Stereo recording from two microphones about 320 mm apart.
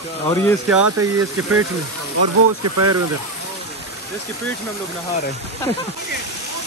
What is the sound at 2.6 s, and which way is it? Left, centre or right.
Speech, right.